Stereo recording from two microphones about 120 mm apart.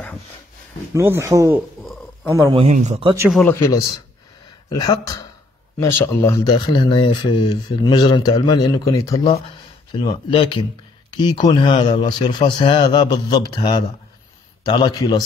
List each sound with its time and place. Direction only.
0.9 s speech: 20° right (ahead or behind)
2.7 s speech: 75° right (ahead or behind)
3.4 s speech: 20° left (ahead or behind)
4.6 s speech: 35° left (ahead or behind)
6.5 s speech: 40° left (ahead or behind)
9.9 s speech: 45° left (ahead or behind)